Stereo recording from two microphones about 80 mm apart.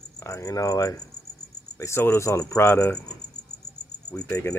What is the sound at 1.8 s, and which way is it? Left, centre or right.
Cricket, left.